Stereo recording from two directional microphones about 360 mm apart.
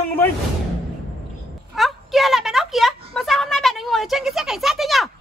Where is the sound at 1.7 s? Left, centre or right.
Centre.